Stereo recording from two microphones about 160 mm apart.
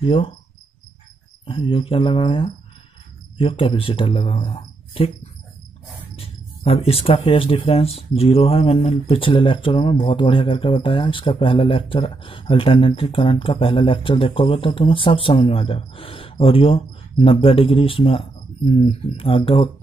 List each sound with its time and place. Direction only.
0.0 s speech: 35° left (ahead or behind)
1.4 s speech: 35° left (ahead or behind)
6.1 s speech: 35° left (ahead or behind)